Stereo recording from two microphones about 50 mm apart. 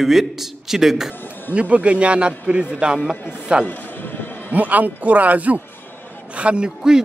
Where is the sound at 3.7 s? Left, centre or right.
Left.